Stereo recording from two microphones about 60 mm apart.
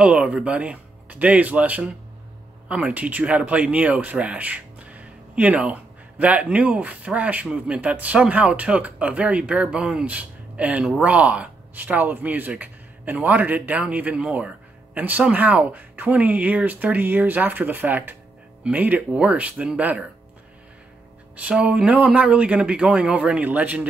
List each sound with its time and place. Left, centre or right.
0.0 s speech: right
21.4 s speech: right